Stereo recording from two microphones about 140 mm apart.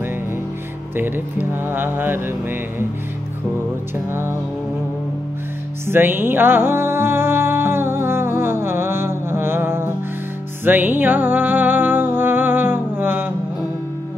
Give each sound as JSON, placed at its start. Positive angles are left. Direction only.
{"t": 0.9, "sound": "speech", "side_deg": -15}
{"t": 4.1, "sound": "speech", "side_deg": -15}
{"t": 5.9, "sound": "music", "side_deg": -15}